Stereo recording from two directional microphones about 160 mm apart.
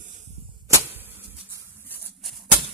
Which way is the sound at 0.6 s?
15° right (ahead or behind).